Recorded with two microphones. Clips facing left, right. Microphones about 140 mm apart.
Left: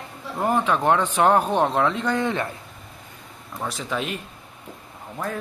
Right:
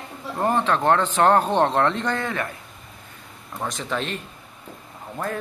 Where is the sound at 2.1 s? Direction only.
25° left (ahead or behind).